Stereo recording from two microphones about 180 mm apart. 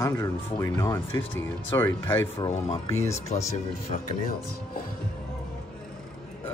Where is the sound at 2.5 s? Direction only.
30° left (ahead or behind).